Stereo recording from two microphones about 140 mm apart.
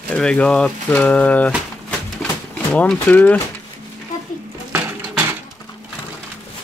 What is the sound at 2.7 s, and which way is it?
Speech, 10° left (ahead or behind).